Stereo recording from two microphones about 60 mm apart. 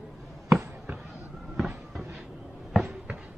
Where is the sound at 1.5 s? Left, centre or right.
Centre.